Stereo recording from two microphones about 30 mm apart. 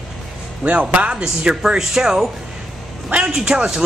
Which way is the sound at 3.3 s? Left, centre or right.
Right.